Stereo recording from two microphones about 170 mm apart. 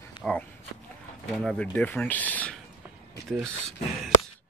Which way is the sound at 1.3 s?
5° left (ahead or behind).